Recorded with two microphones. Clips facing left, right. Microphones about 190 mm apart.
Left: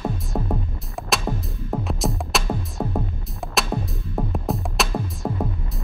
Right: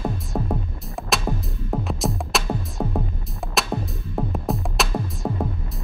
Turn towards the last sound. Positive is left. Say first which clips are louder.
# even
turn(degrees=0)  # may be behind; listen again after turning